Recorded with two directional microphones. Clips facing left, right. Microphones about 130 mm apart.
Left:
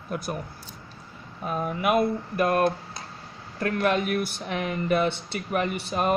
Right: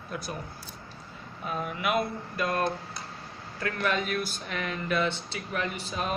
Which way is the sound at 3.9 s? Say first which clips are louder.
Left 4 dB; 60° left (ahead or behind).